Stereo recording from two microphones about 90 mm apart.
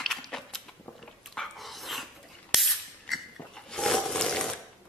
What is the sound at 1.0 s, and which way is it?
Dog, centre (ahead or behind).